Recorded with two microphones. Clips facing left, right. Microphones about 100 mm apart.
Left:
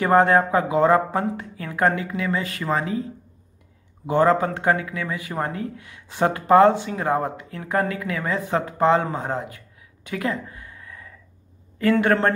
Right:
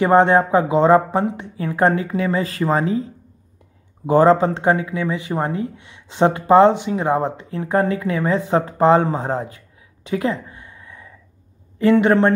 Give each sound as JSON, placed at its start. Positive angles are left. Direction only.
{"t": 0.0, "sound": "a man's voice", "side_deg": -20}
{"t": 10.0, "sound": "a sound", "side_deg": -25}
{"t": 11.8, "sound": "a man's voice", "side_deg": -20}